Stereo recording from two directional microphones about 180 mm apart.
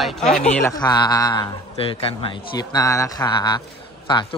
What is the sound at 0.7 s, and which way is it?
A man's voice, 25° left (ahead or behind).